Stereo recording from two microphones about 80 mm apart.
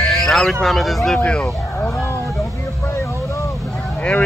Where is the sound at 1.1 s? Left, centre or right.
Centre.